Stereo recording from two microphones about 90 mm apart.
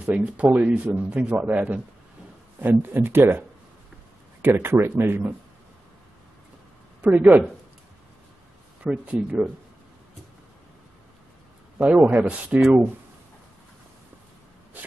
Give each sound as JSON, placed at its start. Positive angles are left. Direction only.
{"t": 0.0, "sound": "a man's voice", "side_deg": -15}
{"t": 7.0, "sound": "speech", "side_deg": -20}
{"t": 8.8, "sound": "a man's voice", "side_deg": -10}
{"t": 11.8, "sound": "a man's voice", "side_deg": -15}